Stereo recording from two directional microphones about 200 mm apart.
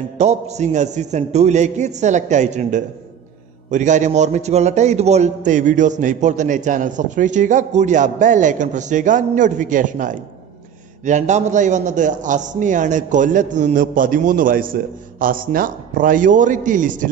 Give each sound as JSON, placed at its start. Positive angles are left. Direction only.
{"t": 0.2, "sound": "a man's voice", "side_deg": -35}